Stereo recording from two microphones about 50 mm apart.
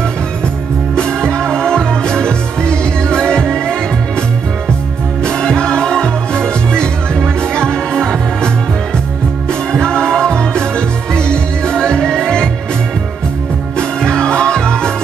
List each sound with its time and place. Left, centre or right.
1.3 s music: centre
5.2 s music: centre
9.5 s music: centre
14.1 s music: centre